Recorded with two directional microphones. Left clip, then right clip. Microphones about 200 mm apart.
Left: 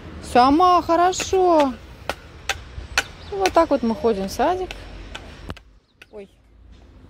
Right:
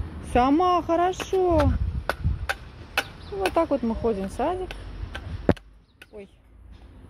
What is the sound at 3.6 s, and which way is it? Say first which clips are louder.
Speech: left 6 dB; 25° left (ahead or behind).